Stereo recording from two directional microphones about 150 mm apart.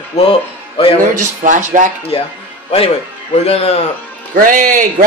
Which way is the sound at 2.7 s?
40° left (ahead or behind).